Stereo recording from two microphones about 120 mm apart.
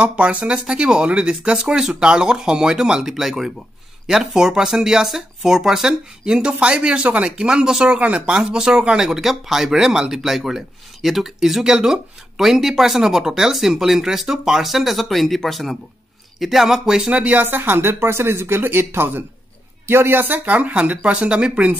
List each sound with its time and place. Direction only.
0.0 s speech: 10° right (ahead or behind)